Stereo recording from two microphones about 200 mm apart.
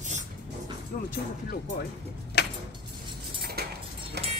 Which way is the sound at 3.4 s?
50° right (ahead or behind).